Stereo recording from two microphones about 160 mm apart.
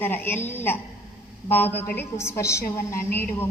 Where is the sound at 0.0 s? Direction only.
15° left (ahead or behind).